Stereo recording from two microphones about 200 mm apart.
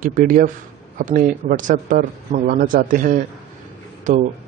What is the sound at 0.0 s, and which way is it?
A man's voice, 40° right (ahead or behind).